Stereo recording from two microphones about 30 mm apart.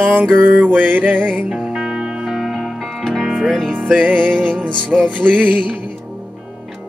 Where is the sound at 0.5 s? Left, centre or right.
Right.